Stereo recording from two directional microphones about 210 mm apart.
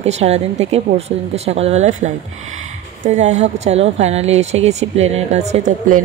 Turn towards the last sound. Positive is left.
turn(degrees=-35)  # may be behind; listen again after turning